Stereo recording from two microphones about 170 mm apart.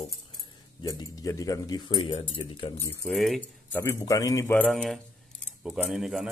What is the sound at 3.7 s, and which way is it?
Speech, 15° left (ahead or behind).